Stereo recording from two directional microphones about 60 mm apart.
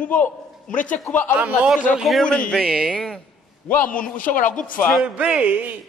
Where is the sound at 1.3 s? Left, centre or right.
Right.